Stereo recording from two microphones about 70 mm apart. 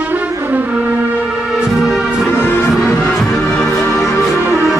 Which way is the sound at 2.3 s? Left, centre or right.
Left.